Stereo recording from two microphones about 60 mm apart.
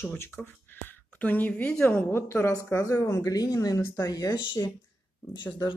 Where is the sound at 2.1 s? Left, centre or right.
Left.